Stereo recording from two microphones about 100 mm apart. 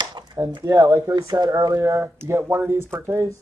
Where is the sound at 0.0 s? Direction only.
45° right (ahead or behind).